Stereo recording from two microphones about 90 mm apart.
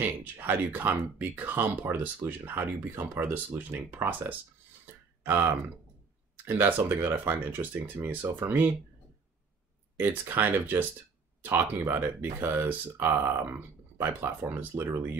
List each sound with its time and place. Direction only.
0.0 s speech: 20° right (ahead or behind)
9.9 s speech: 25° right (ahead or behind)